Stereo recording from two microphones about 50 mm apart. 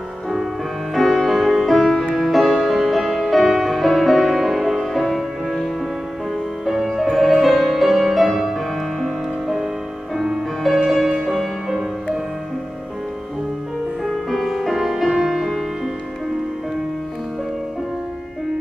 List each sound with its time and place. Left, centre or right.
0.9 s music: centre
14.0 s music: centre